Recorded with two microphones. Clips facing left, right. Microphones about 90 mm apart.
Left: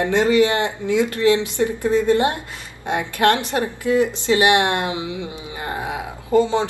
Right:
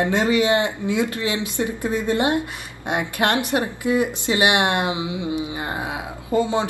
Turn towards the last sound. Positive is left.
turn(degrees=-15)  # may be behind; listen again after turning